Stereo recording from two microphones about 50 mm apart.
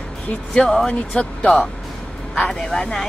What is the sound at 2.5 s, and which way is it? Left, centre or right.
Speech, centre.